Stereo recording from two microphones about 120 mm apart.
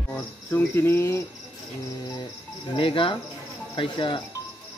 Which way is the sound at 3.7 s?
40° left (ahead or behind).